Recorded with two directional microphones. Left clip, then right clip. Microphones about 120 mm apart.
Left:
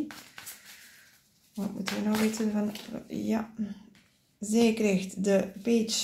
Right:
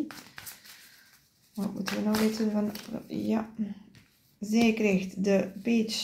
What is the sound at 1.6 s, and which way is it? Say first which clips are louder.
A woman's voice: right 1 dB; 15° left (ahead or behind).